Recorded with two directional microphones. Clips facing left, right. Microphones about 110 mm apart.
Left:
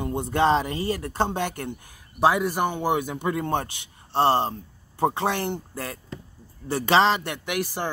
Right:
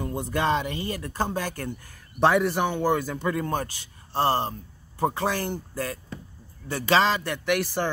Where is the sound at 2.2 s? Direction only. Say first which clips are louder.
Even; 5° left (ahead or behind).